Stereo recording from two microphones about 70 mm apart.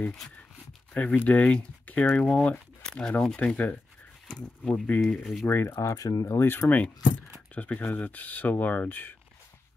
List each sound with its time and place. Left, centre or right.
0.9 s speech: left
5.0 s speech: centre
5.4 s speech: left
5.8 s speech: left
6.3 s speech: left
7.5 s speech: centre